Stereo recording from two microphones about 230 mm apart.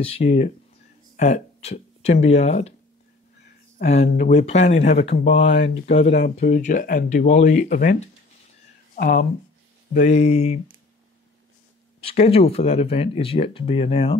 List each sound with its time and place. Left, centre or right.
0.0 s speech: left
3.8 s speech: left
5.4 s speech: left
5.9 s speech: left
12.0 s speech: left